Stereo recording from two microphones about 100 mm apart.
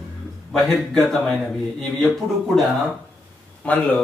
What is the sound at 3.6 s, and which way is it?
Speech, 15° left (ahead or behind).